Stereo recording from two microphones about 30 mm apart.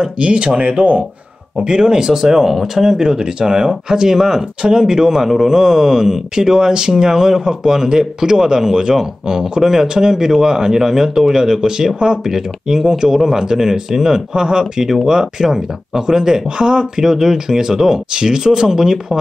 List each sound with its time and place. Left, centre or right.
0.2 s speech: right
1.6 s speech: right
2.2 s speech: centre
4.6 s speech: right